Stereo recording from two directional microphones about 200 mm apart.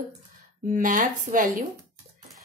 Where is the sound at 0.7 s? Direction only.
40° right (ahead or behind).